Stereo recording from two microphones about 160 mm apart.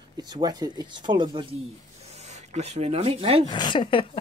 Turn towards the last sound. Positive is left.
turn(degrees=30)  # may be behind; listen again after turning